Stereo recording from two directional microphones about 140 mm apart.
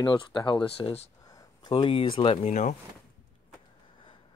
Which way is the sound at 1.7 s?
40° left (ahead or behind).